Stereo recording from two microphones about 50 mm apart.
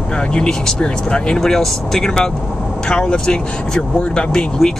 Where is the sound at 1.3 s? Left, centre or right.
Centre.